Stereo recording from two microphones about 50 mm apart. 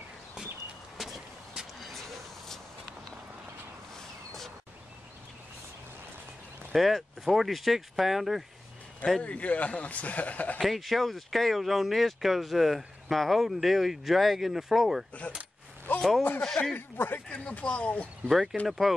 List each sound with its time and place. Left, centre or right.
1.0 s a sound: centre
6.7 s speech: centre
9.2 s speech: left
10.6 s speech: centre
16.0 s a man's voice: centre
16.7 s speech: left
17.3 s speech: left
18.3 s speech: centre